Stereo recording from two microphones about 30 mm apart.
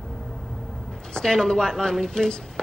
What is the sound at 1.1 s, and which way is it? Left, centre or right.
A man's voice, left.